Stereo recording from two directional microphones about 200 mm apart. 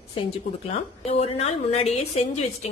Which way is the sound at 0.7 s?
30° left (ahead or behind).